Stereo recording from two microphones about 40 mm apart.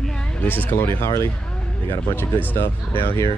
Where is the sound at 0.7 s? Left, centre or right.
Left.